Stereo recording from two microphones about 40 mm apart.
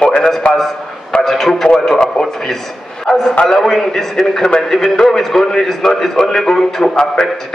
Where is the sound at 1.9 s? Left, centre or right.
Centre.